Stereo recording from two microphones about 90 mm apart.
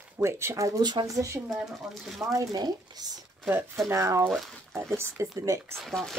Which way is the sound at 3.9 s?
35° right (ahead or behind).